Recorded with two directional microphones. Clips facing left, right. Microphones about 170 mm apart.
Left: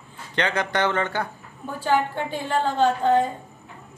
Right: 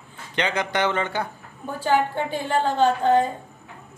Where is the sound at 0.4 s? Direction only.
15° right (ahead or behind).